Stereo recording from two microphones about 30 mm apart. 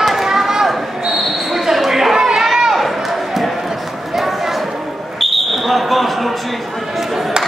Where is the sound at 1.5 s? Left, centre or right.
Centre.